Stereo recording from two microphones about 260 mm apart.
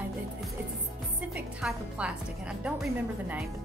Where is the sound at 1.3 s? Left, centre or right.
Centre.